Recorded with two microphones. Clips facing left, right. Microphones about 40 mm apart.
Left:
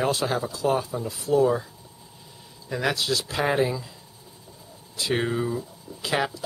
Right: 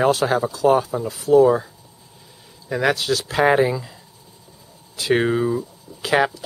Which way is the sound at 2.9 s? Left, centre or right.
Right.